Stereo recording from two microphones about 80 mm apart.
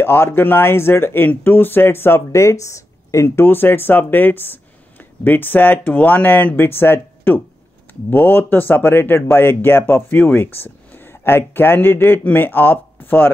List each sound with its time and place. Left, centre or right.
0.0 s speech: left